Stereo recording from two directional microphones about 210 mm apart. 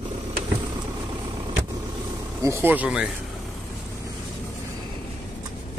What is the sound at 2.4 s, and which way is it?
Speech, 10° right (ahead or behind).